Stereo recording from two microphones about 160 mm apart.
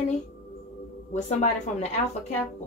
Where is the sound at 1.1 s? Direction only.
50° left (ahead or behind).